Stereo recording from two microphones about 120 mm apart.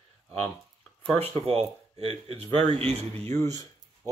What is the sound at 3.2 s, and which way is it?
Speech, 20° left (ahead or behind).